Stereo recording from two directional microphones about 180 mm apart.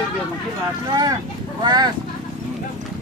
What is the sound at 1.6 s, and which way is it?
Speech, 25° right (ahead or behind).